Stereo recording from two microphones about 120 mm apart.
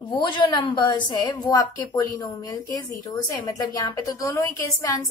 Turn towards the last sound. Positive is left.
turn(degrees=25)  # may be behind; listen again after turning